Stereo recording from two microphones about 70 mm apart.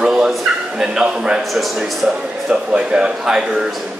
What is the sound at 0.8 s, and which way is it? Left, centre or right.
A man's voice, centre.